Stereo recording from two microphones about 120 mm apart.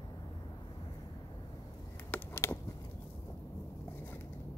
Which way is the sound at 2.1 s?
20° left (ahead or behind).